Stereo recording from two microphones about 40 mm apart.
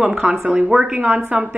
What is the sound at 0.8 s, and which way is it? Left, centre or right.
Speech, right.